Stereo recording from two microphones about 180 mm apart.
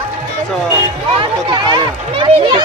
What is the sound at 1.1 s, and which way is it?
Speech, 25° right (ahead or behind).